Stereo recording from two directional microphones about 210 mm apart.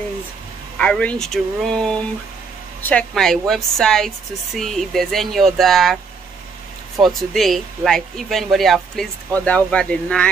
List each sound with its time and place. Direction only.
0.7 s speech: 5° left (ahead or behind)
2.9 s speech: 5° left (ahead or behind)
7.0 s speech: centre (ahead or behind)